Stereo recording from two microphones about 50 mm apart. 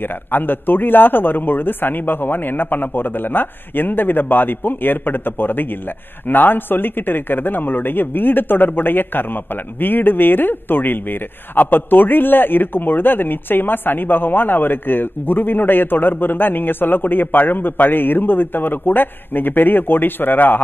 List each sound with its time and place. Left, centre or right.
0.0 s a man's voice: left